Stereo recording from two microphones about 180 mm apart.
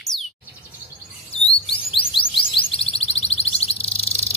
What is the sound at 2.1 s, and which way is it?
Music, 30° left (ahead or behind).